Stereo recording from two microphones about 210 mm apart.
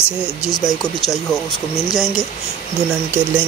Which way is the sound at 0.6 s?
Centre (ahead or behind).